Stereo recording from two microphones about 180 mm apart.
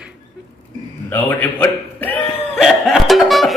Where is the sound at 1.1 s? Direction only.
10° left (ahead or behind).